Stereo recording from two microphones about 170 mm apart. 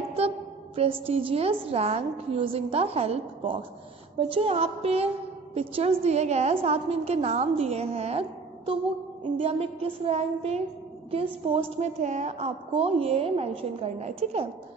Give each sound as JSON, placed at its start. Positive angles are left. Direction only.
{"t": 1.0, "sound": "a woman's voice", "side_deg": -35}